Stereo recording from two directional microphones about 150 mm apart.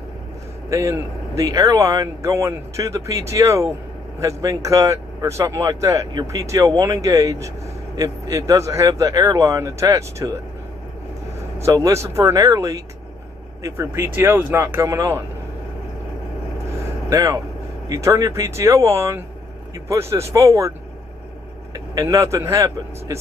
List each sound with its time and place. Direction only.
0.7 s speech: 20° right (ahead or behind)
11.6 s speech: 20° right (ahead or behind)
17.1 s speech: 25° right (ahead or behind)
21.7 s speech: 25° right (ahead or behind)